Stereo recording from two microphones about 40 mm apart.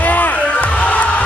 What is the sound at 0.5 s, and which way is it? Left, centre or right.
Music, left.